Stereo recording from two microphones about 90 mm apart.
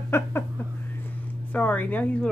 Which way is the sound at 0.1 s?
25° left (ahead or behind).